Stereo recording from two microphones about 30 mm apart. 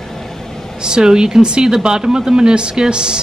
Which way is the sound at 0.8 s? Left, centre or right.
Right.